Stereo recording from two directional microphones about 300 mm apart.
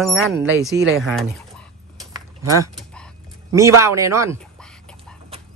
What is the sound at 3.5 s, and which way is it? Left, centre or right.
Speech, centre.